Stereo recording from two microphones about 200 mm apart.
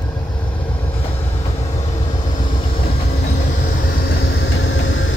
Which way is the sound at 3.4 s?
55° left (ahead or behind).